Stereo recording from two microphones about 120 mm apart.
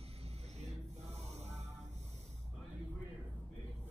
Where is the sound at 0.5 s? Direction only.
65° right (ahead or behind).